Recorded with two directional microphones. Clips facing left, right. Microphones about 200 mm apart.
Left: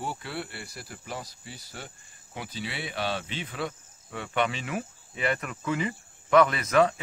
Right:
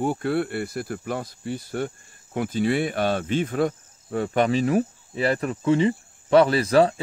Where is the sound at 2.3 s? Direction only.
50° right (ahead or behind).